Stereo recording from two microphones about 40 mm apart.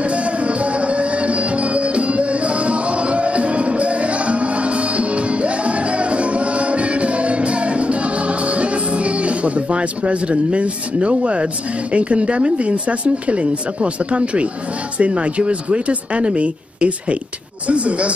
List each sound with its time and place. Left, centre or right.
0.1 s music: right
11.9 s speech: right